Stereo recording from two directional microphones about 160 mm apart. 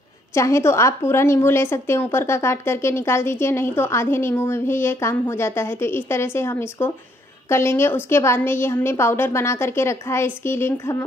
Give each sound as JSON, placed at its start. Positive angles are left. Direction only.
{"t": 0.3, "sound": "a woman's voice", "side_deg": 15}